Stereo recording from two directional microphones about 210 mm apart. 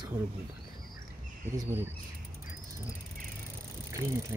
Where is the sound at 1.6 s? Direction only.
10° right (ahead or behind).